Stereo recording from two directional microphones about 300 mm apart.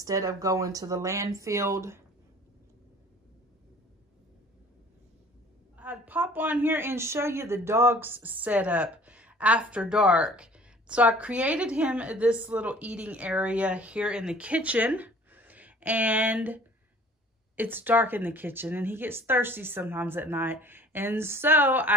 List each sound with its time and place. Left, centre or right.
0.0 s speech: centre
5.8 s speech: centre